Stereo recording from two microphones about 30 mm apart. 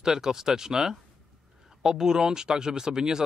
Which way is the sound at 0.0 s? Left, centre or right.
Centre.